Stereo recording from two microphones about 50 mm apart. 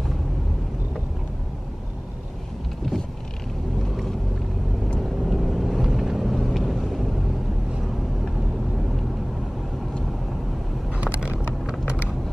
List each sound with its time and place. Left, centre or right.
5.2 s vehicle: centre
10.9 s vehicle: right